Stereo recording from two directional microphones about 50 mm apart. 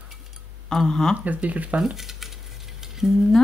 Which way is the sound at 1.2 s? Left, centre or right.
Right.